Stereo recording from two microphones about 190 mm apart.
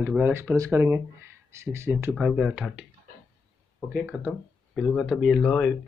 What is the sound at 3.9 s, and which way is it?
Speech, 5° right (ahead or behind).